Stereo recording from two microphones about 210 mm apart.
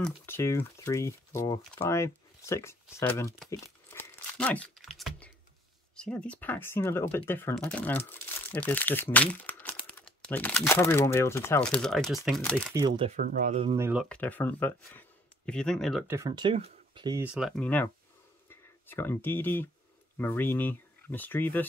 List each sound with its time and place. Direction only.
0.0 s speech: 10° left (ahead or behind)
3.4 s crumpling: 10° left (ahead or behind)
5.9 s speech: 5° left (ahead or behind)
12.8 s speech: 25° right (ahead or behind)
13.2 s speech: 40° right (ahead or behind)
13.7 s speech: 10° right (ahead or behind)
14.0 s speech: 5° left (ahead or behind)
16.1 s speech: 15° right (ahead or behind)
17.2 s speech: 5° right (ahead or behind)